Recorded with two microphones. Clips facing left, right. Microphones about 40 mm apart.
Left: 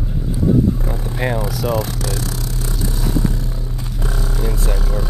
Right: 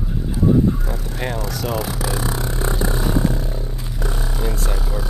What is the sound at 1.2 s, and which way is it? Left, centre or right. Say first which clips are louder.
Speech: left 5 dB; centre.